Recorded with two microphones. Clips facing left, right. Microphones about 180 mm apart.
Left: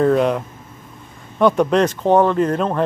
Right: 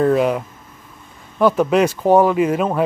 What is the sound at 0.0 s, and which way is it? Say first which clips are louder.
Speech: even; 5° right (ahead or behind).